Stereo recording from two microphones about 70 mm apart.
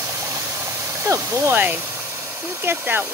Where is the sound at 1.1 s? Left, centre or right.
Right.